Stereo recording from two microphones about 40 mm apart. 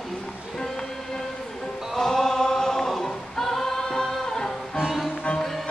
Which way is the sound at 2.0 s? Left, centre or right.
Centre.